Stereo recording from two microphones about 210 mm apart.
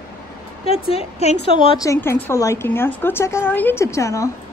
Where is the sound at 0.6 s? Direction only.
30° left (ahead or behind).